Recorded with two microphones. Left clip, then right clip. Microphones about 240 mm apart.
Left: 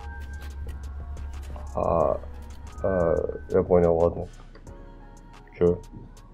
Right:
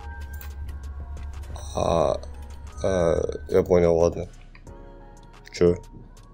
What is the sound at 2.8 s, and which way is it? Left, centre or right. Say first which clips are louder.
Speech: right 1 dB; right.